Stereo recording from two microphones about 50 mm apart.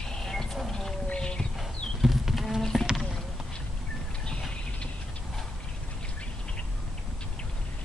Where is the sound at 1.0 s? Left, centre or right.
Centre.